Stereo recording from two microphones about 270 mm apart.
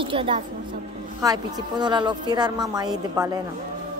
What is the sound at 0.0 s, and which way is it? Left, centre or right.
A woman's voice, centre.